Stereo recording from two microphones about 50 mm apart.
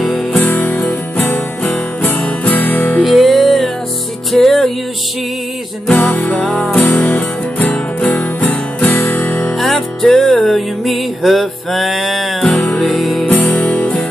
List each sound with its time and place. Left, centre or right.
0.4 s music: left
3.0 s music: centre
5.9 s music: left
6.6 s music: centre
7.1 s music: left
8.9 s music: left
9.6 s music: centre
13.2 s music: left